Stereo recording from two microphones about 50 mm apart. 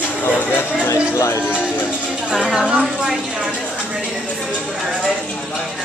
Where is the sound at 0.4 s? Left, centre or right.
Left.